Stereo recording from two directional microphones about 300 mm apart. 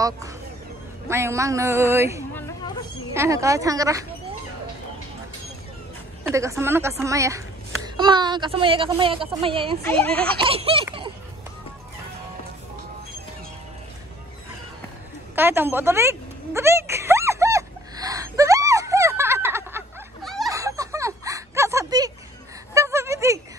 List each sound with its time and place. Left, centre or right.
1.0 s a woman's voice: centre
6.2 s a woman's voice: centre
9.8 s speech: centre
10.3 s baby laughter: centre
15.3 s a sound: centre